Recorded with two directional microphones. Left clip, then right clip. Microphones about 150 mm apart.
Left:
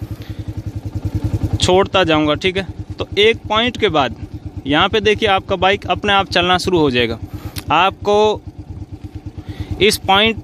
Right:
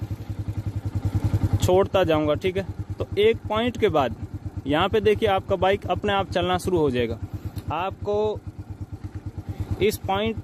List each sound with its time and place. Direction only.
1.6 s speech: 10° left (ahead or behind)
7.5 s speech: 25° left (ahead or behind)
9.8 s speech: 15° left (ahead or behind)